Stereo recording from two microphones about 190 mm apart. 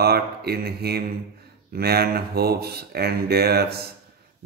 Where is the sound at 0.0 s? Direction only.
55° right (ahead or behind).